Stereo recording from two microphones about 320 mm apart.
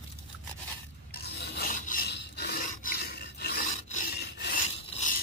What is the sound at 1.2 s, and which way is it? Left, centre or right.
Filing, left.